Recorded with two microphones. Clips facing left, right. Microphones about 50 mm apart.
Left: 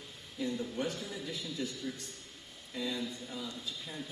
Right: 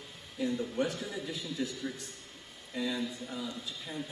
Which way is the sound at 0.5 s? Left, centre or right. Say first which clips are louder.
Right 3 dB; centre.